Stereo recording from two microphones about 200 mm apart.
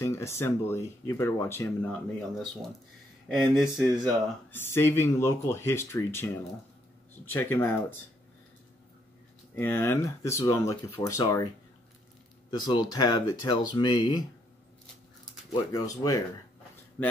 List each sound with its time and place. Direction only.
0.0 s speech: 15° left (ahead or behind)
7.3 s speech: 10° left (ahead or behind)
9.6 s speech: 10° left (ahead or behind)
12.4 s speech: 20° left (ahead or behind)
15.5 s speech: 20° left (ahead or behind)